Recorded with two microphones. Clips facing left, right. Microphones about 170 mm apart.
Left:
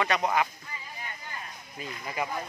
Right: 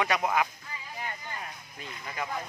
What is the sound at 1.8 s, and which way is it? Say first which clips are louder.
Speech: left 4 dB; 10° left (ahead or behind).